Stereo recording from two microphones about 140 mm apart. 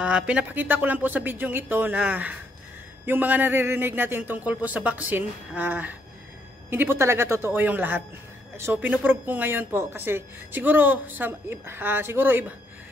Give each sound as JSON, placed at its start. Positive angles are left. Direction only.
{"t": 0.0, "sound": "speech", "side_deg": -10}